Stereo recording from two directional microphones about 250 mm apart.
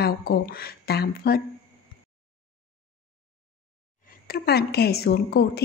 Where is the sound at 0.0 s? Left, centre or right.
Left.